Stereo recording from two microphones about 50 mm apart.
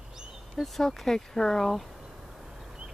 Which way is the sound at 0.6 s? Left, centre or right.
Centre.